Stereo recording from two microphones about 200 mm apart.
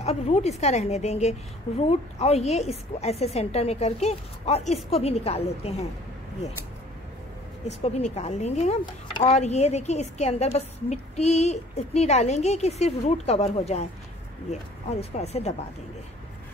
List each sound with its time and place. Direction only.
0.0 s speech: 30° left (ahead or behind)
7.6 s speech: 35° left (ahead or behind)